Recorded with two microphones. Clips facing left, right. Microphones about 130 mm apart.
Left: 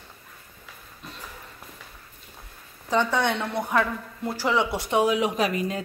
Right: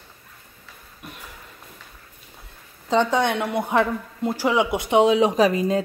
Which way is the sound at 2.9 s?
15° right (ahead or behind).